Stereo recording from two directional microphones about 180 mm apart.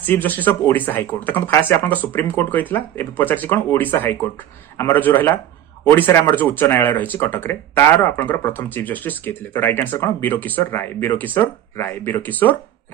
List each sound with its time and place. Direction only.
0.0 s speech: 10° left (ahead or behind)